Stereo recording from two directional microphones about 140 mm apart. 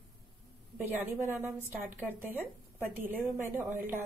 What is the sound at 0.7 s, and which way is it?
Speech, 15° right (ahead or behind).